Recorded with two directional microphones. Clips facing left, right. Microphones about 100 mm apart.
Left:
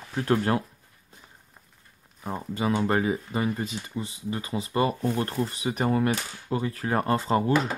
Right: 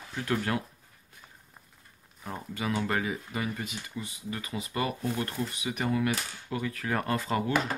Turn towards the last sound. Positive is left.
turn(degrees=30)  # may be behind; listen again after turning